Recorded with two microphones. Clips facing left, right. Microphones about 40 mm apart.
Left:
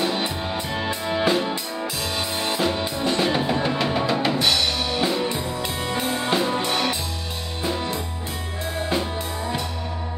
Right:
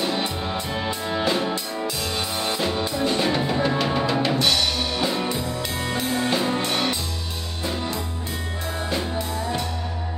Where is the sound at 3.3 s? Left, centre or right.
Centre.